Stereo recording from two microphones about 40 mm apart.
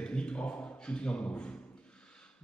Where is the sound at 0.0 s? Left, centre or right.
Left.